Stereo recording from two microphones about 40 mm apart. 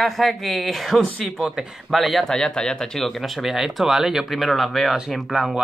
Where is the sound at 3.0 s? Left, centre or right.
Centre.